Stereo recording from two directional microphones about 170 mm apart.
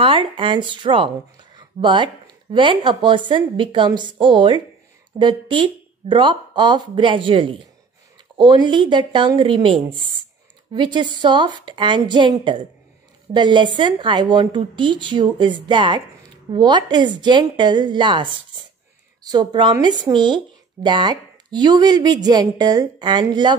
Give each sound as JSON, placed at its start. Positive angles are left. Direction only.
{"t": 0.0, "sound": "a woman's voice", "side_deg": -30}